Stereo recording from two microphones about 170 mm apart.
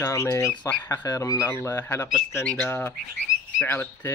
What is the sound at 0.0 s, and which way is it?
Speech, 15° left (ahead or behind).